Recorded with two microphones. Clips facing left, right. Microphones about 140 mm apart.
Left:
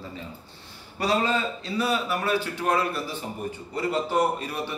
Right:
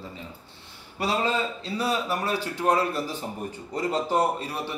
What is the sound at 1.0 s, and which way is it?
A man's voice, 25° right (ahead or behind).